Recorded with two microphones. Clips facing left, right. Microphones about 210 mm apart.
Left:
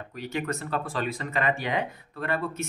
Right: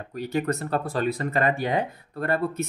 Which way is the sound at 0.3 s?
40° right (ahead or behind).